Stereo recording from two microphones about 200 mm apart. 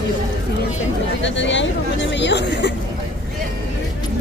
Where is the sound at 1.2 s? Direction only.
65° left (ahead or behind).